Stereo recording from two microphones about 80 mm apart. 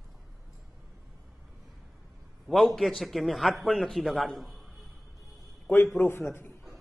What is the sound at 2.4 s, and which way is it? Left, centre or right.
A man's voice, centre.